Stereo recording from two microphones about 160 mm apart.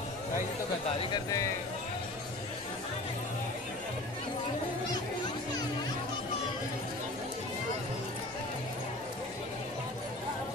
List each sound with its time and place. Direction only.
1.1 s speech: 20° left (ahead or behind)